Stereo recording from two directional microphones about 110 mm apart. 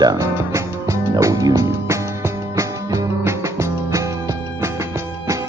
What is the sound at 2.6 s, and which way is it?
Music, 25° right (ahead or behind).